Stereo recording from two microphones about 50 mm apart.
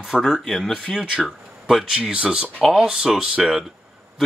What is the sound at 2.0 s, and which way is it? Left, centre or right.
Speech, right.